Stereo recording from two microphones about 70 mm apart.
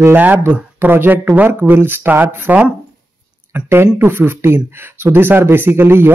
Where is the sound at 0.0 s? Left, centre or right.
Right.